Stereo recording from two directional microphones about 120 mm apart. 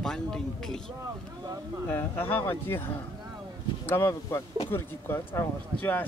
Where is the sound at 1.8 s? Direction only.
15° left (ahead or behind).